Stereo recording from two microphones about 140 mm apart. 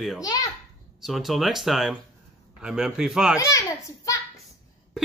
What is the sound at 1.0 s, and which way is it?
Speech, centre (ahead or behind).